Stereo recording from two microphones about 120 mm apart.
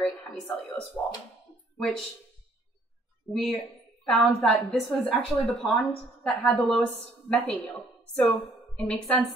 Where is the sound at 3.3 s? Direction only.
Centre (ahead or behind).